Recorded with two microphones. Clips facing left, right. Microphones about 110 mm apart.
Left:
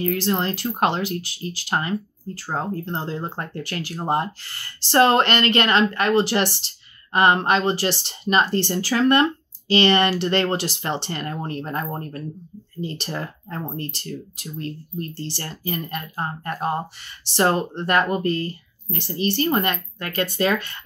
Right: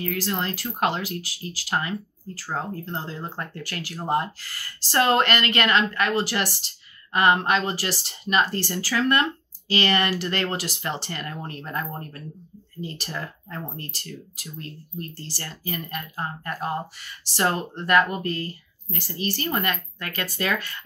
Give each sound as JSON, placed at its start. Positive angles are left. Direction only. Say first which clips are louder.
{"t": 0.0, "sound": "speech", "louder": "left 5 dB", "side_deg": 30}